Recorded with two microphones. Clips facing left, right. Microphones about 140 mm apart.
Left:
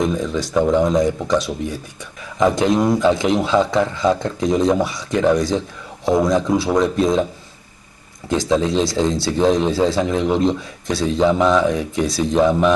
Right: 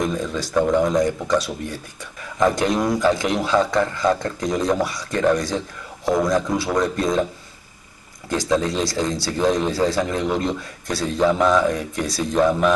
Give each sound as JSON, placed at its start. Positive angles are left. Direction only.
{"t": 0.0, "sound": "a man's voice", "side_deg": 0}
{"t": 8.3, "sound": "a man's voice", "side_deg": 0}